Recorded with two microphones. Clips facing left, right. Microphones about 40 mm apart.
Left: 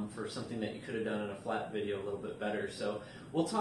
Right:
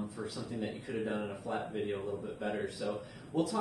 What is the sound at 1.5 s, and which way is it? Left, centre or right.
A man's voice, left.